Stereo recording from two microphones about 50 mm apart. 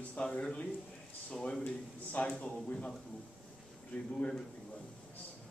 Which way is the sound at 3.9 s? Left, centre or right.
Left.